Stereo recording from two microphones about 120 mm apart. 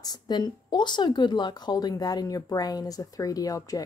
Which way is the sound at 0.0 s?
35° left (ahead or behind).